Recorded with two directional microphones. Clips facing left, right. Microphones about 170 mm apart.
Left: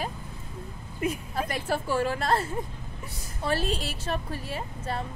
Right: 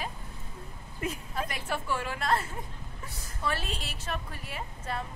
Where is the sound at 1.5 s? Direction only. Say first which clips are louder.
Left 7 dB; 35° left (ahead or behind).